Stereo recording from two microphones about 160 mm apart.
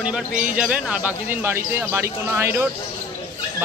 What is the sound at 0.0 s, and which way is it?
Speech, 5° right (ahead or behind).